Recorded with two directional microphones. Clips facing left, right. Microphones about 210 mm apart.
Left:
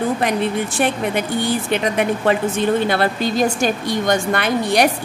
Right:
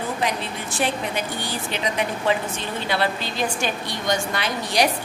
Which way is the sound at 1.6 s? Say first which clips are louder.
Left 7 dB; 55° left (ahead or behind).